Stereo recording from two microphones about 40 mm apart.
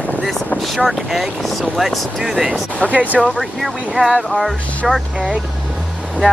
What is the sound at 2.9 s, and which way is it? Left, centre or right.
Speech, right.